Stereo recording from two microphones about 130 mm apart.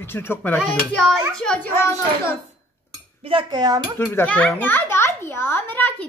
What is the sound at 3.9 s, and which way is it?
A child's voice, 15° left (ahead or behind).